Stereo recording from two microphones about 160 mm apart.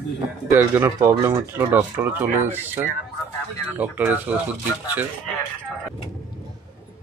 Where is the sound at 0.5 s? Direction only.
15° right (ahead or behind).